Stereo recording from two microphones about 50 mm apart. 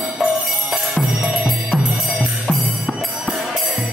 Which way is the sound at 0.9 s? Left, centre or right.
Centre.